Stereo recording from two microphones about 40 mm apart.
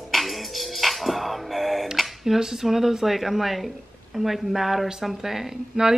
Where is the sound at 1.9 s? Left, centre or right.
Centre.